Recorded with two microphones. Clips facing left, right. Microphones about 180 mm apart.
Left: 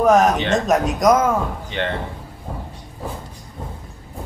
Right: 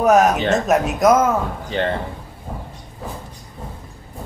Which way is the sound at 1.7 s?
35° right (ahead or behind).